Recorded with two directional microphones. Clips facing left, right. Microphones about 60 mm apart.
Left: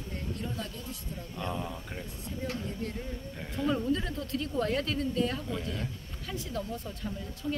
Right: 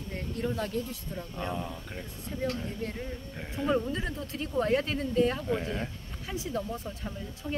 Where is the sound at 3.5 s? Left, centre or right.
Centre.